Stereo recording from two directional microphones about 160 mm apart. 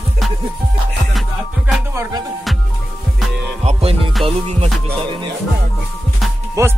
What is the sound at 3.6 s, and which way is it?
Music, 35° right (ahead or behind).